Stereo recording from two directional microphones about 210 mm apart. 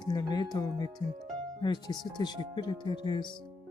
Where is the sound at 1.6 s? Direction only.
20° left (ahead or behind).